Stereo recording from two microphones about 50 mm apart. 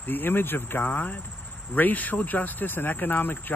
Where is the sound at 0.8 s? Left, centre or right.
Left.